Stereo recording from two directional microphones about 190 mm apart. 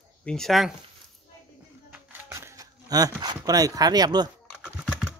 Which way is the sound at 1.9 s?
15° right (ahead or behind).